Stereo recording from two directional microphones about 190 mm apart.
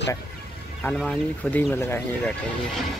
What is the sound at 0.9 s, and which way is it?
Speech, centre (ahead or behind).